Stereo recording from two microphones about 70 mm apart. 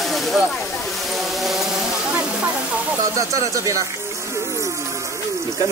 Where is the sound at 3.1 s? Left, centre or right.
Right.